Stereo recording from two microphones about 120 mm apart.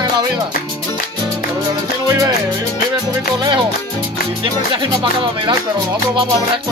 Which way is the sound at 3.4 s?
45° right (ahead or behind).